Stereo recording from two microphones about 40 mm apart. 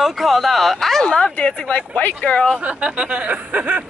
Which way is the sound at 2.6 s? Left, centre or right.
Right.